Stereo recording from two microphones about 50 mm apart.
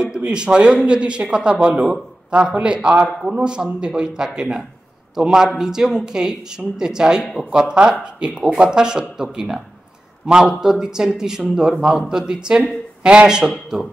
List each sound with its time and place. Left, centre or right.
0.0 s a man's voice: centre